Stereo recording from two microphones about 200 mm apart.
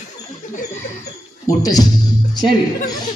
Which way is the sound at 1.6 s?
20° left (ahead or behind).